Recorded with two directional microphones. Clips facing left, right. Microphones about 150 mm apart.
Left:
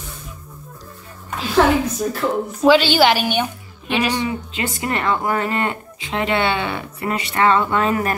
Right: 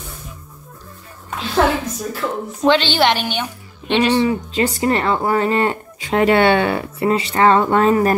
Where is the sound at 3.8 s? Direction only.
30° right (ahead or behind).